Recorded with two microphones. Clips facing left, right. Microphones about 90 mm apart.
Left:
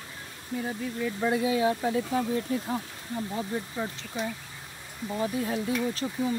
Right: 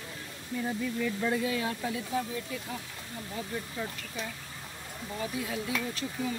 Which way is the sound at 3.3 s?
25° left (ahead or behind).